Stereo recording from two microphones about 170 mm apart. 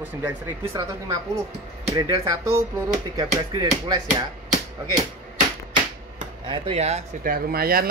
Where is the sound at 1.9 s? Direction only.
20° right (ahead or behind).